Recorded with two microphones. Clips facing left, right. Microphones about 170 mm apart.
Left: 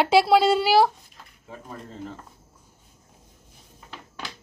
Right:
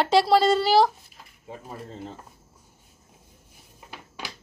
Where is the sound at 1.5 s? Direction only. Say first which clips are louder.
Right 1 dB; 25° right (ahead or behind).